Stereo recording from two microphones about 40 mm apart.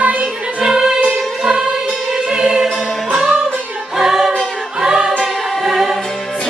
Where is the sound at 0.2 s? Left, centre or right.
Centre.